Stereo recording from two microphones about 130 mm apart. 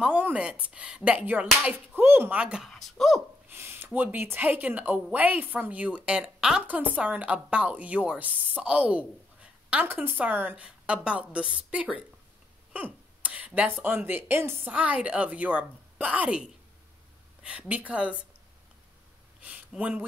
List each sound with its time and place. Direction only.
0.0 s speech: 10° right (ahead or behind)
3.4 s speech: 20° right (ahead or behind)
12.7 s a sound: 10° right (ahead or behind)
13.8 s speech: 15° right (ahead or behind)
19.4 s speech: 10° right (ahead or behind)